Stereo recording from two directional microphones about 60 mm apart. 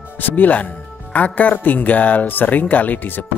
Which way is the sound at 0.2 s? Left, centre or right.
Left.